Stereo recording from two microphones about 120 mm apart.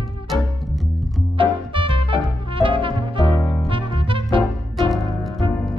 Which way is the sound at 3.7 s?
45° right (ahead or behind).